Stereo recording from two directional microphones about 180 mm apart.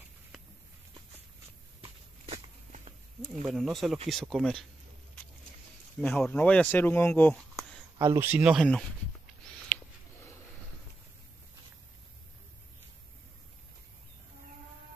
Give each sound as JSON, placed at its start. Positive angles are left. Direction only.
{"t": 1.8, "sound": "walk", "side_deg": -35}
{"t": 3.5, "sound": "speech", "side_deg": 0}
{"t": 5.9, "sound": "speech", "side_deg": 5}
{"t": 7.5, "sound": "speech", "side_deg": -15}